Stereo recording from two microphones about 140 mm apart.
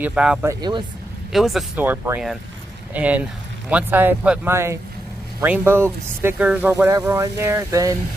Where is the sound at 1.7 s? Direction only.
15° right (ahead or behind).